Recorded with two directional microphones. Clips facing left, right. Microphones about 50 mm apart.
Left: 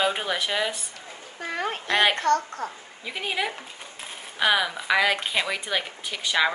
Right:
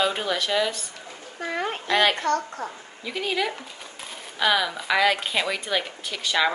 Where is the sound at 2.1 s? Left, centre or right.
Left.